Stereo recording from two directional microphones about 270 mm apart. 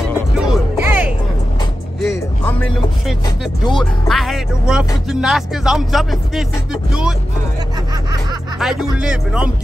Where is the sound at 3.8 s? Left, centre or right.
Centre.